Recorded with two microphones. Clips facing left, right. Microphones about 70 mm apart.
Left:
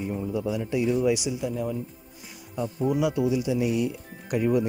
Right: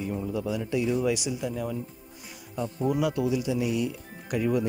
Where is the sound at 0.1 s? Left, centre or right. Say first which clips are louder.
Left 2 dB; centre.